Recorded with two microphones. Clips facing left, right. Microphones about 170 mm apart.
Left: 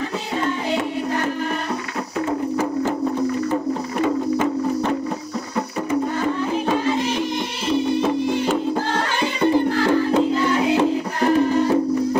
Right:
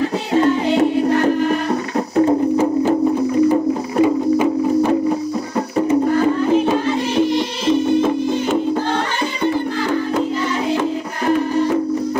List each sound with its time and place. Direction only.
2.1 s music: 30° right (ahead or behind)
4.0 s music: 10° right (ahead or behind)